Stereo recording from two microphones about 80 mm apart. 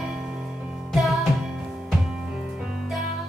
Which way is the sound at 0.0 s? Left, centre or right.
Centre.